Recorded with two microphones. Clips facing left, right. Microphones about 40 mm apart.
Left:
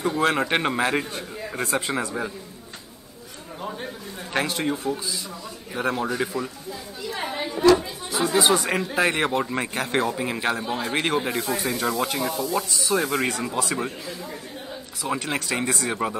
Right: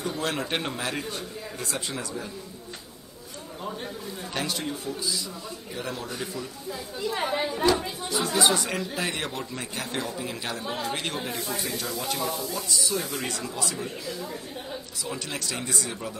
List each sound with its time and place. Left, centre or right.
0.2 s a man's voice: left
4.3 s a man's voice: left
7.2 s chatter: centre
7.7 s speech: centre
8.6 s a man's voice: left
12.2 s speech: left
12.9 s a man's voice: left
13.3 s a man's voice: left
15.1 s a man's voice: left